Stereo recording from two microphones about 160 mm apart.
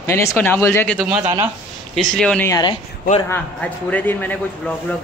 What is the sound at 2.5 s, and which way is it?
Speech, 25° left (ahead or behind).